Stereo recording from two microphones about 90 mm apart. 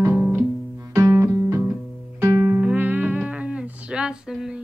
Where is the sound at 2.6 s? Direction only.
20° right (ahead or behind).